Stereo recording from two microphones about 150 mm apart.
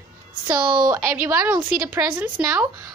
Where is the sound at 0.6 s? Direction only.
30° right (ahead or behind).